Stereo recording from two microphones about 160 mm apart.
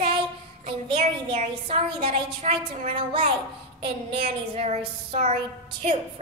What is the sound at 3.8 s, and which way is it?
A woman's voice, 40° right (ahead or behind).